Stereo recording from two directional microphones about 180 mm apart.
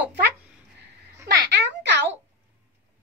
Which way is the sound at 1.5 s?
75° right (ahead or behind).